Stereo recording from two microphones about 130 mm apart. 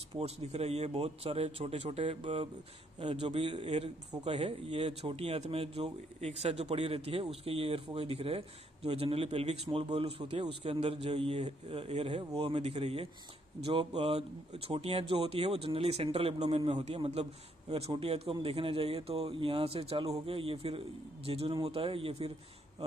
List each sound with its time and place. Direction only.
0.2 s speech: 55° right (ahead or behind)